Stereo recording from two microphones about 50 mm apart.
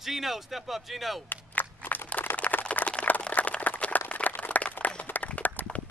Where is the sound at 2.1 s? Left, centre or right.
Left.